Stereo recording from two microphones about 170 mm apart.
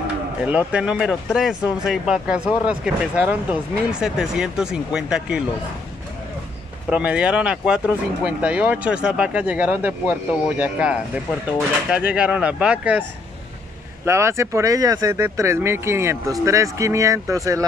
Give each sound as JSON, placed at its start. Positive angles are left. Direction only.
{"t": 0.4, "sound": "speech", "side_deg": -5}
{"t": 6.9, "sound": "speech", "side_deg": -5}
{"t": 14.0, "sound": "speech", "side_deg": -15}